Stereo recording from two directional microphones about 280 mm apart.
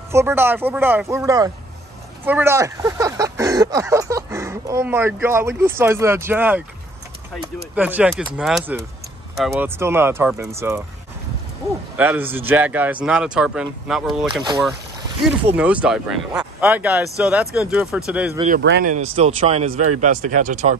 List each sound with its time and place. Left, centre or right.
0.1 s speech: centre
7.7 s speech: centre
12.0 s speech: centre
15.5 s speech: centre
18.6 s speech: right